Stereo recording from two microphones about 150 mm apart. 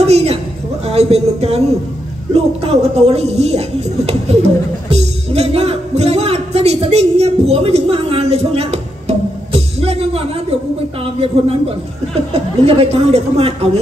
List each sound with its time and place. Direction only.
0.0 s a sound: 45° right (ahead or behind)
0.8 s speech: 45° right (ahead or behind)
4.9 s music: 45° right (ahead or behind)
12.6 s speech: 40° right (ahead or behind)